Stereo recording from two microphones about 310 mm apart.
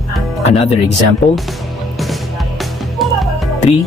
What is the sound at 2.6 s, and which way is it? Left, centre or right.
Music, centre.